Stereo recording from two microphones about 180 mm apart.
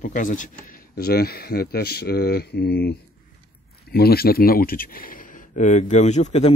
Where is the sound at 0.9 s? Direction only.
60° left (ahead or behind).